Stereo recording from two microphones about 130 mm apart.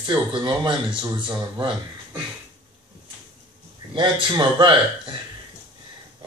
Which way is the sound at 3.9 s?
40° right (ahead or behind).